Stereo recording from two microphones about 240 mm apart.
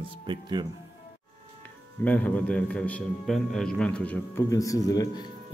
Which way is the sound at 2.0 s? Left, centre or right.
Centre.